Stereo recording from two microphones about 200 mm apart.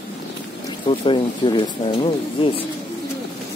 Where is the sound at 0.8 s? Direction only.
25° left (ahead or behind).